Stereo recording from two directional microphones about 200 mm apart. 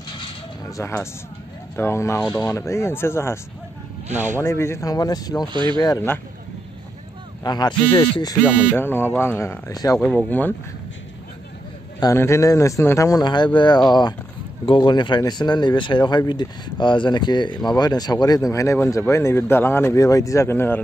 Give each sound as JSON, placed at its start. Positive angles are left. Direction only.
{"t": 0.2, "sound": "a sound", "side_deg": 15}
{"t": 1.8, "sound": "speech", "side_deg": 15}
{"t": 4.4, "sound": "speech", "side_deg": 10}
{"t": 5.5, "sound": "speech", "side_deg": -25}
{"t": 5.8, "sound": "speech", "side_deg": 20}
{"t": 7.4, "sound": "speech", "side_deg": 20}
{"t": 8.7, "sound": "speech", "side_deg": 10}
{"t": 12.0, "sound": "speech", "side_deg": 15}